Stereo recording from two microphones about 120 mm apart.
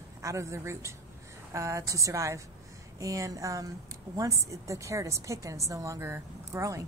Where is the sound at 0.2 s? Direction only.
25° right (ahead or behind).